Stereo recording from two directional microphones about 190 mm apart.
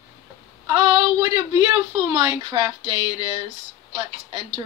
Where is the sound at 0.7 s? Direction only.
20° right (ahead or behind).